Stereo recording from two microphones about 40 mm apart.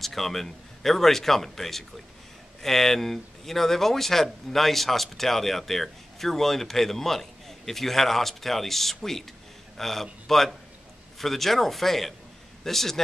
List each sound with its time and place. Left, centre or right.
0.0 s a man's voice: centre